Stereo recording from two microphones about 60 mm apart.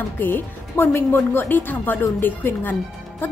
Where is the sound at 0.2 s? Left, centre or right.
Left.